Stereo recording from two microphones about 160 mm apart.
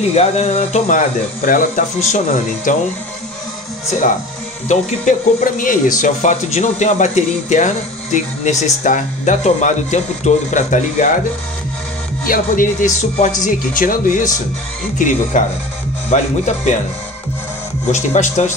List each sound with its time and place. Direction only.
0.1 s speech: 40° left (ahead or behind)
4.6 s speech: 50° left (ahead or behind)
12.3 s speech: 55° left (ahead or behind)
17.9 s speech: 50° left (ahead or behind)